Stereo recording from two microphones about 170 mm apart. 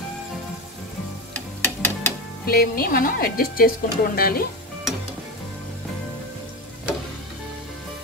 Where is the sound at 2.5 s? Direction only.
60° left (ahead or behind).